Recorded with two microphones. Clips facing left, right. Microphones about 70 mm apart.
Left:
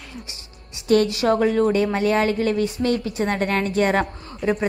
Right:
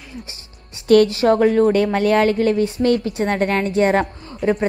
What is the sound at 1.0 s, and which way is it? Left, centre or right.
A woman's voice, right.